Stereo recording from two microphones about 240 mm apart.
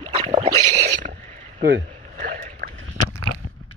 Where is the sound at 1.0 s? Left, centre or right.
Right.